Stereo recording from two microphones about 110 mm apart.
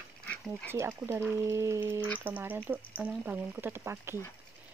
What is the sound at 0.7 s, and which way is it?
Speech, 25° right (ahead or behind).